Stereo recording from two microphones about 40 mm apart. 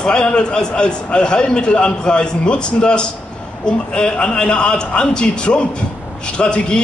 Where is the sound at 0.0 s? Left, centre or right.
Left.